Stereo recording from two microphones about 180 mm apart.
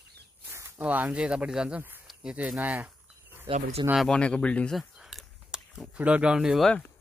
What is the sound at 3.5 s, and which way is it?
Speech, 35° right (ahead or behind).